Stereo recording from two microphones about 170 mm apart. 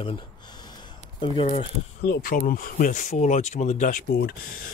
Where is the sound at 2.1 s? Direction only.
55° left (ahead or behind).